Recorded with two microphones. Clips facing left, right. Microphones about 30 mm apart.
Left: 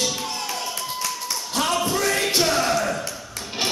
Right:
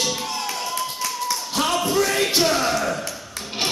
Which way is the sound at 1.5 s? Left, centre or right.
Centre.